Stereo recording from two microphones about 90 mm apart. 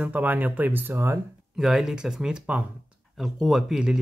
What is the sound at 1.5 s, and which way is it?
Speech, 5° right (ahead or behind).